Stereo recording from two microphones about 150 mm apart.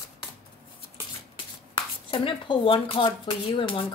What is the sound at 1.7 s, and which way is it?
Speech, 35° left (ahead or behind).